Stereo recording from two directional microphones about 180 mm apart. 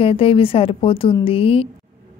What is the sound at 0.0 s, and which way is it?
A woman's voice, 30° left (ahead or behind).